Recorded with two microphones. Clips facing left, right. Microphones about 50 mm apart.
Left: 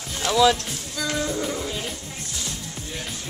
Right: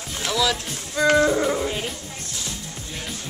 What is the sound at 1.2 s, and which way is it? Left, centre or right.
Music, right.